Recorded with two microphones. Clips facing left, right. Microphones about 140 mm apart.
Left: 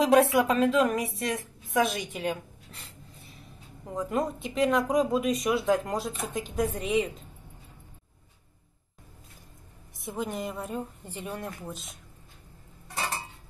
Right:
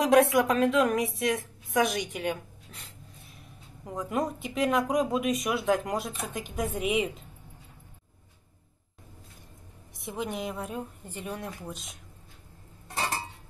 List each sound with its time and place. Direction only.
0.0 s a woman's voice: 5° left (ahead or behind)
9.9 s speech: centre (ahead or behind)